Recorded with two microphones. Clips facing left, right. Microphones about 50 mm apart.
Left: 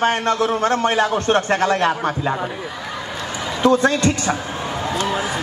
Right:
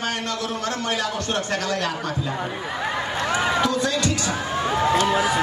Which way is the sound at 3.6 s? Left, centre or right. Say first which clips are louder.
Left 7 dB; left.